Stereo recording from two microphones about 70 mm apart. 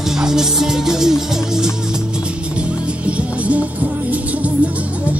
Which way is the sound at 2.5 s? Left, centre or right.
Centre.